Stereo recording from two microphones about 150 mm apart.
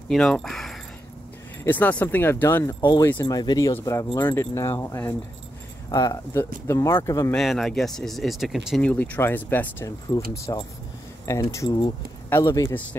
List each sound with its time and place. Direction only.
0.1 s speech: 5° left (ahead or behind)
2.8 s speech: 30° left (ahead or behind)
7.3 s speech: centre (ahead or behind)
8.8 s speech: 10° left (ahead or behind)